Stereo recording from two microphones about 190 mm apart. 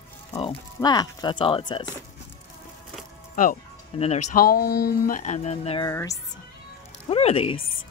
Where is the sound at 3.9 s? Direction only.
30° left (ahead or behind).